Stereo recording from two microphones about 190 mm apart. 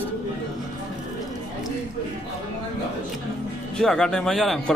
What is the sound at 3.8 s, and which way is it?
Speech, 5° left (ahead or behind).